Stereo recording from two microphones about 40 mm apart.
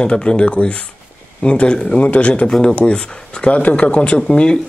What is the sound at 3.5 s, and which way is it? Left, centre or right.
Speech, left.